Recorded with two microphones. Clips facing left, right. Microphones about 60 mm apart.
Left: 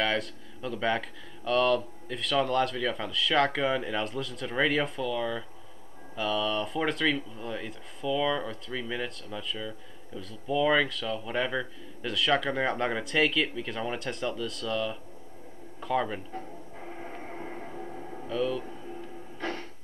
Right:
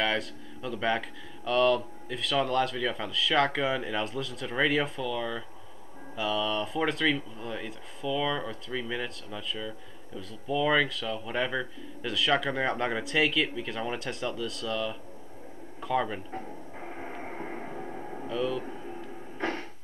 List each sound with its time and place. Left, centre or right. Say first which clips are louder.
0.0 s a man's voice: even; centre
16.3 s music: right 1 dB; centre
18.2 s speech: left 1 dB; centre